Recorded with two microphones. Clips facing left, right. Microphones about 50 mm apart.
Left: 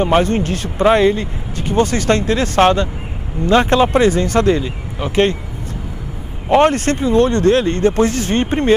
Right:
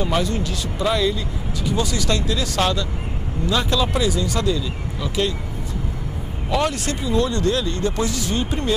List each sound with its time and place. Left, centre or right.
0.0 s speech: left
6.5 s speech: left